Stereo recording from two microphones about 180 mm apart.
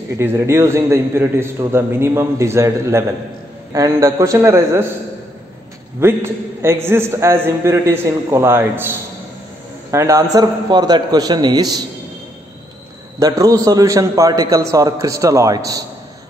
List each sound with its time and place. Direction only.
0.2 s a man's voice: 15° right (ahead or behind)
5.9 s a man's voice: 15° right (ahead or behind)
13.2 s a man's voice: 20° right (ahead or behind)